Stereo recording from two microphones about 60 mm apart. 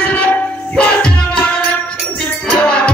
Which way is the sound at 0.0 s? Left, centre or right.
Left.